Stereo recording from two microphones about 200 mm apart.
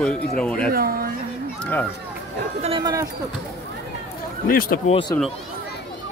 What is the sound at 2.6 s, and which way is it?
Speech, 25° right (ahead or behind).